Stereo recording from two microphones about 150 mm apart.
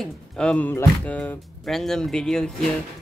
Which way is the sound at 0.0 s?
5° left (ahead or behind).